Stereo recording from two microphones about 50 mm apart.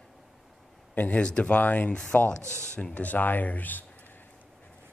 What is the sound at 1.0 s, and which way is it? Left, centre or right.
Speech, left.